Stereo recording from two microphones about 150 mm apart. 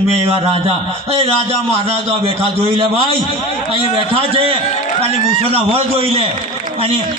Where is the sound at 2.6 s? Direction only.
40° right (ahead or behind).